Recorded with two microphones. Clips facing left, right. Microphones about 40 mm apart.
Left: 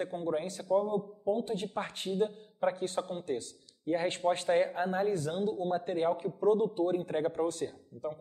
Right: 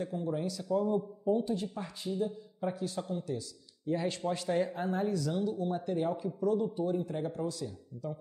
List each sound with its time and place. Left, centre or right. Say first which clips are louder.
0.0 s speech: left 1 dB; left